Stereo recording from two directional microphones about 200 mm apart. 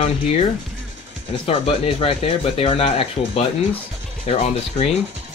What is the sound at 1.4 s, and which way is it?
Speech, 30° left (ahead or behind).